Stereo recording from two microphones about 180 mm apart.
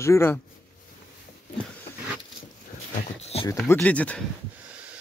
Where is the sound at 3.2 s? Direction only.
35° left (ahead or behind).